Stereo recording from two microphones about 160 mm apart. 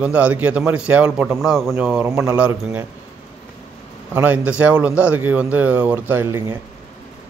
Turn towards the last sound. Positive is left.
turn(degrees=-15)  # may be behind; listen again after turning